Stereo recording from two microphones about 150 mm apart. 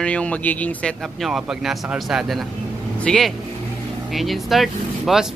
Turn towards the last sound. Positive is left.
turn(degrees=0)  # may be behind; listen again after turning